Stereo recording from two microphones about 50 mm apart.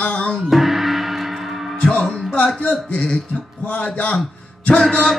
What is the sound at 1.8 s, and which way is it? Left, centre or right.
Music, left.